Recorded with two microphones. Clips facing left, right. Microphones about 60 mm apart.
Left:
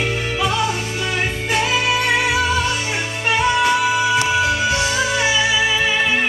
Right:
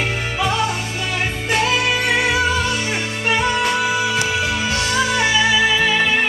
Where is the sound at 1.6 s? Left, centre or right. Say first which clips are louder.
Left 1 dB; centre.